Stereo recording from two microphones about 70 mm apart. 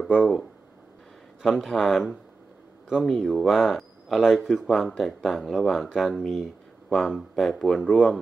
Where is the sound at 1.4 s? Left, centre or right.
Centre.